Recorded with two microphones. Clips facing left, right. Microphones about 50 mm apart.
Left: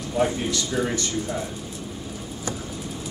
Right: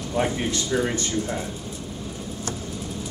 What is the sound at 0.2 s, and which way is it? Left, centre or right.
Speech, right.